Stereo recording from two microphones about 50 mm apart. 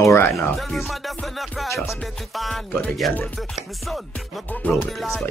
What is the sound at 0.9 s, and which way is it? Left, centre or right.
Music, centre.